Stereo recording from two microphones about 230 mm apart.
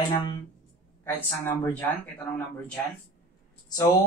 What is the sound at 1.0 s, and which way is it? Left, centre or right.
A man's voice, centre.